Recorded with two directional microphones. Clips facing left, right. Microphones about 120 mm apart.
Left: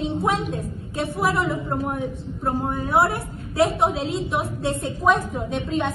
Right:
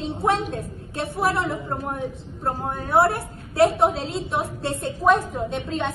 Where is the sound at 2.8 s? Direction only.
Centre (ahead or behind).